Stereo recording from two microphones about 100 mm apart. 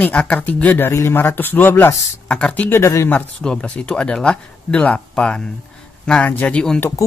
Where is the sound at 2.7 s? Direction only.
25° left (ahead or behind).